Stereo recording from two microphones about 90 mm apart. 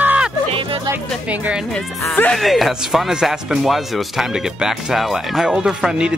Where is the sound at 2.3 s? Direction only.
Centre (ahead or behind).